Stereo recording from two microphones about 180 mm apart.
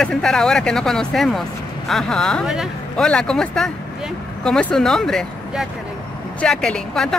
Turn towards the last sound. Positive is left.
turn(degrees=5)  # may be behind; listen again after turning